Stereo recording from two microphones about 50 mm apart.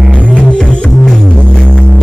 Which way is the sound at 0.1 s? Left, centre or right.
Centre.